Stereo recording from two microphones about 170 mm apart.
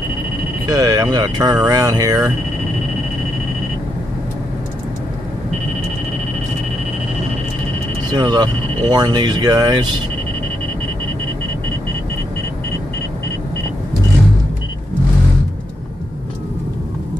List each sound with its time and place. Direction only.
0.7 s speech: 20° right (ahead or behind)
8.1 s speech: 25° right (ahead or behind)